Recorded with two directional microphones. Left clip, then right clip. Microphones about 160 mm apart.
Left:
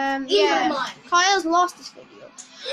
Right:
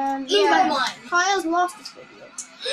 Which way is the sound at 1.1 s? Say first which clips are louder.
Left 3 dB; 5° left (ahead or behind).